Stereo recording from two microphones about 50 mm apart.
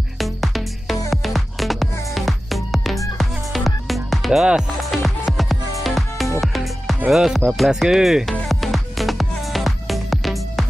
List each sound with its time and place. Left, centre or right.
0.2 s music: centre
7.1 s speech: centre
7.5 s music: centre